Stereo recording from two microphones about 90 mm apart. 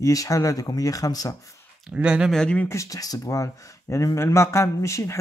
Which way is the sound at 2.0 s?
10° right (ahead or behind).